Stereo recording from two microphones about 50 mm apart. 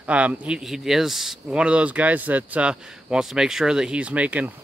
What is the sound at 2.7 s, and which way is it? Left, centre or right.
Speech, centre.